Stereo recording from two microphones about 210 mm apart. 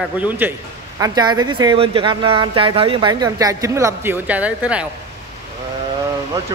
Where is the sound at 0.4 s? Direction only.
10° right (ahead or behind).